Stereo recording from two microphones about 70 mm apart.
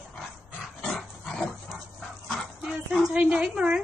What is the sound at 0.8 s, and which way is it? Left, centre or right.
Dog, centre.